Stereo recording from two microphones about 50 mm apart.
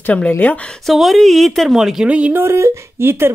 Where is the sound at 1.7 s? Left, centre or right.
Centre.